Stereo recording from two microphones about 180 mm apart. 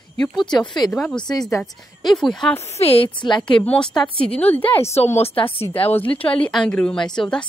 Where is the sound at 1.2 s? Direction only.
20° left (ahead or behind).